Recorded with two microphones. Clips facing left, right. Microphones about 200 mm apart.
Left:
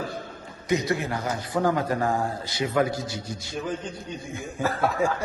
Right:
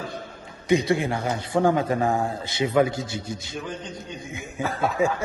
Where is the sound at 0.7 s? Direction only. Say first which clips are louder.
Right 4 dB; 30° right (ahead or behind).